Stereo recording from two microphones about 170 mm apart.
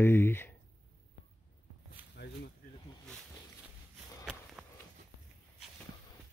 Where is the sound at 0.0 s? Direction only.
15° left (ahead or behind).